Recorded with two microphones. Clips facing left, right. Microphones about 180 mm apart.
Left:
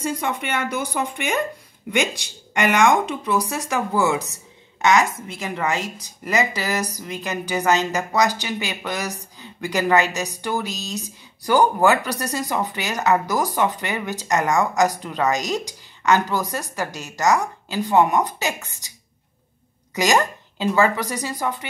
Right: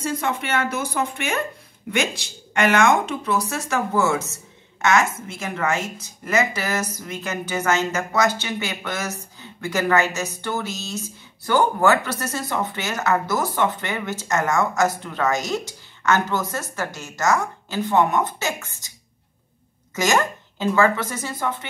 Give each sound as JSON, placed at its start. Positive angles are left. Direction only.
{"t": 0.0, "sound": "speech", "side_deg": 10}
{"t": 20.0, "sound": "speech", "side_deg": 15}